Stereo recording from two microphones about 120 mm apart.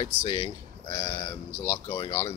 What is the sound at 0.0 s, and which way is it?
Speech, 40° left (ahead or behind).